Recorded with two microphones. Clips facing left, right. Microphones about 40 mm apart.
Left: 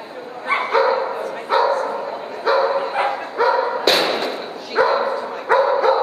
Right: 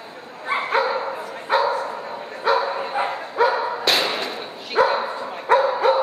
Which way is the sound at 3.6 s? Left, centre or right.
Centre.